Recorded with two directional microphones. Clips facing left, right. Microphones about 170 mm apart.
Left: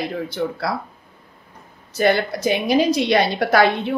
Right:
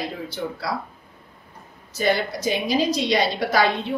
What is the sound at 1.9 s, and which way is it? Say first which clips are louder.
A woman's voice: left 4 dB; 60° left (ahead or behind).